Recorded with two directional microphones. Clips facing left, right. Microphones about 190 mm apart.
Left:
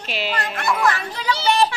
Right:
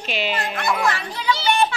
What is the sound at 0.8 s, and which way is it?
Speech, 40° left (ahead or behind).